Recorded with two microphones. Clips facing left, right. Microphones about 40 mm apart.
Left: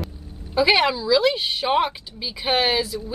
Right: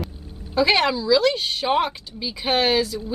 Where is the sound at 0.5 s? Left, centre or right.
Centre.